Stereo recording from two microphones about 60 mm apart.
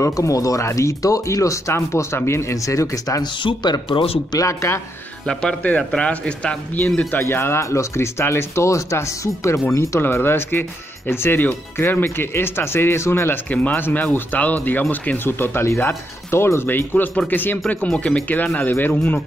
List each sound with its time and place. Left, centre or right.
0.0 s speech: left
0.7 s speech: left
1.7 s speech: left
4.3 s speech: left
5.2 s speech: centre
5.6 s speech: left
7.1 s speech: left
13.5 s speech: left
17.8 s speech: centre
18.6 s speech: left